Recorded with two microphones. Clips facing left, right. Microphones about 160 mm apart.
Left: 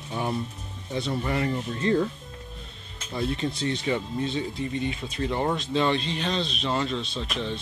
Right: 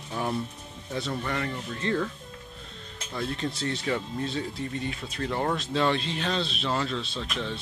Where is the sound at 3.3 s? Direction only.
Centre (ahead or behind).